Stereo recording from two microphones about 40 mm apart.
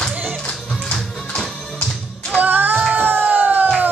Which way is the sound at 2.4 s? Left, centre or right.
Right.